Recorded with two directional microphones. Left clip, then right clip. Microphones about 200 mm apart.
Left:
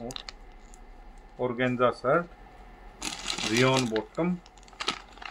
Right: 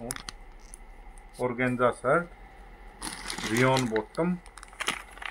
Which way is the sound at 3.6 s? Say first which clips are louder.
Even; 10° left (ahead or behind).